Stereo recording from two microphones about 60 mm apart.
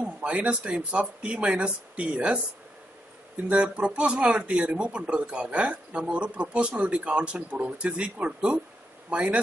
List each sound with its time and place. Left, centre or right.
0.0 s speech: right
3.4 s speech: right